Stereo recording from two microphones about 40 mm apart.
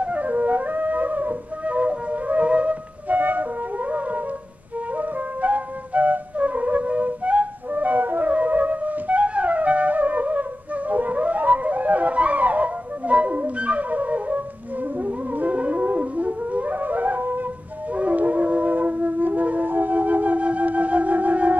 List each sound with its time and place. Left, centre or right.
0.0 s flute: right
3.1 s flute: right
4.9 s flute: right
10.9 s theremin: right
15.0 s music: right
17.9 s music: right